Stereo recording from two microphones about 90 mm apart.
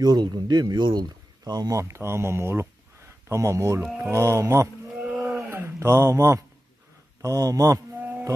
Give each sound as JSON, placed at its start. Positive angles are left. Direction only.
{"t": 0.0, "sound": "speech", "side_deg": -50}
{"t": 1.8, "sound": "a man's voice", "side_deg": -30}
{"t": 3.8, "sound": "speech", "side_deg": -5}
{"t": 4.1, "sound": "a man's voice", "side_deg": -30}
{"t": 5.4, "sound": "a sound", "side_deg": -30}
{"t": 7.2, "sound": "a man's voice", "side_deg": -35}